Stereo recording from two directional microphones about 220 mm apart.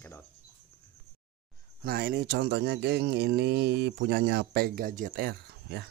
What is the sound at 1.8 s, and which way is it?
Speech, 45° right (ahead or behind).